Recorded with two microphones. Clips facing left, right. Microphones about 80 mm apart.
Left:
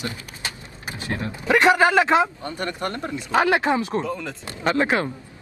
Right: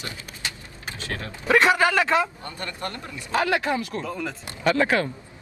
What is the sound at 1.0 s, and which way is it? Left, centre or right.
Speech, left.